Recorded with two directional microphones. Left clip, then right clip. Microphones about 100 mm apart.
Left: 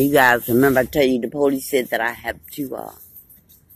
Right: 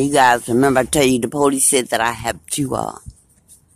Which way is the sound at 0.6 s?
50° right (ahead or behind).